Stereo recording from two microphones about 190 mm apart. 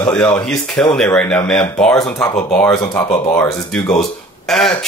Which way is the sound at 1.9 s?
15° left (ahead or behind).